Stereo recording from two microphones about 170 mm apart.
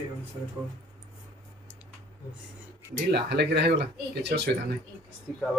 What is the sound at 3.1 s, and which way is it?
Speech, 75° right (ahead or behind).